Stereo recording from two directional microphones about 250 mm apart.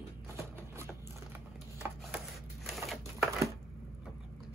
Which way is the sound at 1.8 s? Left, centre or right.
Centre.